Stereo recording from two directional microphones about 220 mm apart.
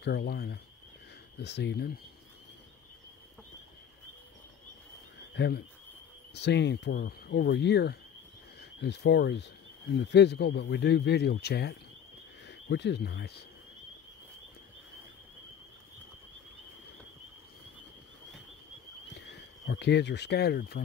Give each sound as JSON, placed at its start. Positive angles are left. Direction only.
{"t": 0.0, "sound": "speech", "side_deg": 50}
{"t": 5.3, "sound": "speech", "side_deg": 50}
{"t": 19.1, "sound": "speech", "side_deg": 50}